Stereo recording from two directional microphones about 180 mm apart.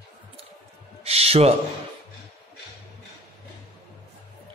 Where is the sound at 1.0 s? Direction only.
35° right (ahead or behind).